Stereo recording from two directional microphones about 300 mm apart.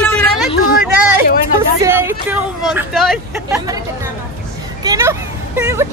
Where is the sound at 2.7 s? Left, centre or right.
Centre.